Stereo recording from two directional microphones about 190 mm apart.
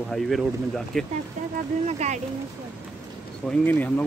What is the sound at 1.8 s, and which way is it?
Speech, 35° right (ahead or behind).